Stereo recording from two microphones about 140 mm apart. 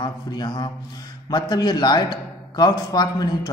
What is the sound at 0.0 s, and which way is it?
A man's voice, 30° left (ahead or behind).